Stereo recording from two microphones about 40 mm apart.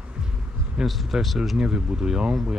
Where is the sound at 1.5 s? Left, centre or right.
Right.